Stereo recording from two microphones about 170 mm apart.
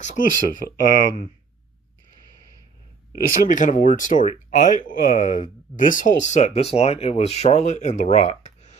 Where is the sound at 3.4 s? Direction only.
50° left (ahead or behind).